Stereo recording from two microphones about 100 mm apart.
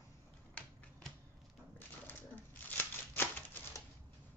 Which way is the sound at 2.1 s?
20° left (ahead or behind).